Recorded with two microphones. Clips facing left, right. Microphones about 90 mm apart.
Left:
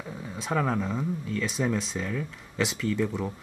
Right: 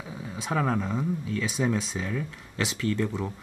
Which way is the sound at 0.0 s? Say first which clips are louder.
Even; centre (ahead or behind).